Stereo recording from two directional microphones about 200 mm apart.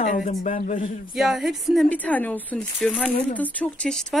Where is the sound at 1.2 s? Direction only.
Centre (ahead or behind).